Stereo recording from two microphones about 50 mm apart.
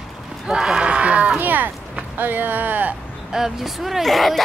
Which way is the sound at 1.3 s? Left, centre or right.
Right.